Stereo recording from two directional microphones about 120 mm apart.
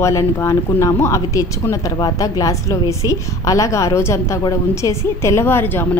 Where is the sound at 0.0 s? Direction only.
25° left (ahead or behind).